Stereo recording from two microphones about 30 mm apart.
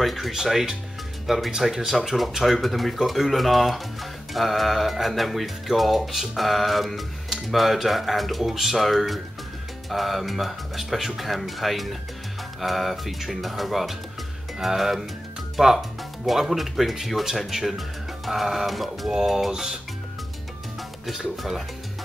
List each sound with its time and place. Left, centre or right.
0.0 s speech: centre
19.5 s speech: centre
21.4 s speech: centre